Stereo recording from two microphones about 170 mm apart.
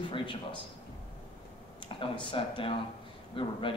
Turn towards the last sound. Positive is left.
turn(degrees=30)  # may be behind; listen again after turning